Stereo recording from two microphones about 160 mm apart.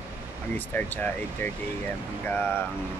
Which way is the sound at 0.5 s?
10° left (ahead or behind).